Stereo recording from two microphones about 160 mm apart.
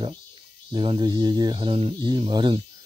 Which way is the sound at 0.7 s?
30° right (ahead or behind).